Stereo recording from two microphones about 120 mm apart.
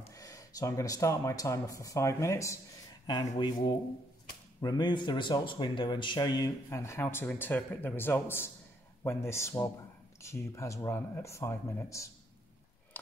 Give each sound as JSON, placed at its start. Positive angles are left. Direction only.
{"t": 0.1, "sound": "speech", "side_deg": 30}
{"t": 3.1, "sound": "speech", "side_deg": 35}